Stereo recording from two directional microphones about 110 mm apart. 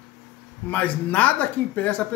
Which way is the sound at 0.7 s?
15° left (ahead or behind).